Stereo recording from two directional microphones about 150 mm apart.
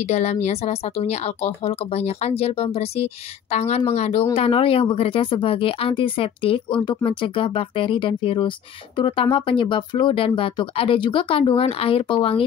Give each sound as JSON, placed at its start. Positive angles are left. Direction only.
{"t": 0.0, "sound": "speech", "side_deg": 45}